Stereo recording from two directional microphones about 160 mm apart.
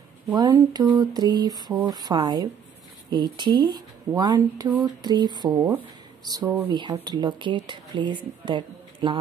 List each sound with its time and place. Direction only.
0.3 s a woman's voice: 25° right (ahead or behind)